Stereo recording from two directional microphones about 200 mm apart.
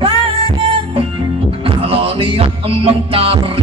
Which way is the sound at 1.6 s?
30° right (ahead or behind).